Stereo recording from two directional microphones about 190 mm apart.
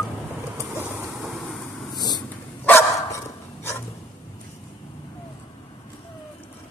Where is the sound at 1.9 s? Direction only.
20° left (ahead or behind).